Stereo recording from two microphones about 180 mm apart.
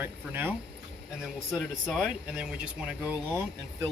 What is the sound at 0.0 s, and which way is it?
Speech, 10° right (ahead or behind).